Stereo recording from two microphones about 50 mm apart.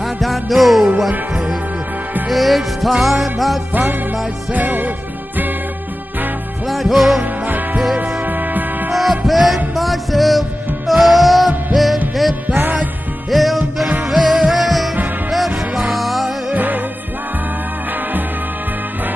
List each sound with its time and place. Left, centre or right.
0.0 s music: centre
4.5 s music: right
6.7 s music: centre
7.4 s music: right
8.9 s music: centre
13.3 s music: centre
16.0 s music: centre
16.5 s music: right